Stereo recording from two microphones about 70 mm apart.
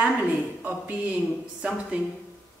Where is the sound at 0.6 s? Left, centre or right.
Right.